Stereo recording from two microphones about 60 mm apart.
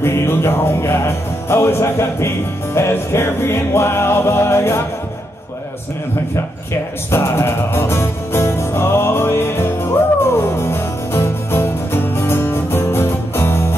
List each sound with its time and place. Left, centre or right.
0.0 s music: left
7.1 s music: left